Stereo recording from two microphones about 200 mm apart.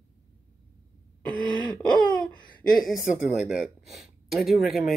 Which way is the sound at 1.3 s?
20° left (ahead or behind).